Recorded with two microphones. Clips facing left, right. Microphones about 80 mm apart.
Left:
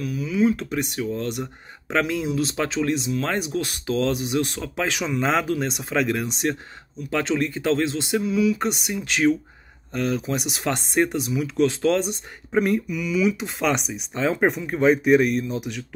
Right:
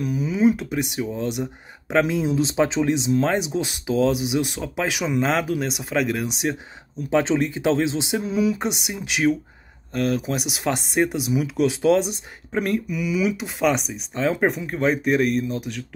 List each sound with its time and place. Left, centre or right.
0.0 s speech: right; by 6.5 s centre
7.1 s speech: centre
8.2 s speech: right
8.5 s speech: centre
12.5 s speech: centre